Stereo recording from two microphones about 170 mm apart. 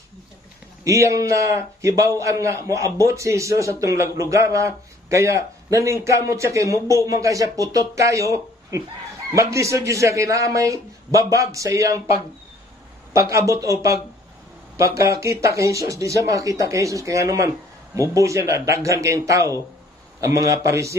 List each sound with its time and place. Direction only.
0.8 s a man's voice: 20° right (ahead or behind)
13.1 s a man's voice: 20° right (ahead or behind)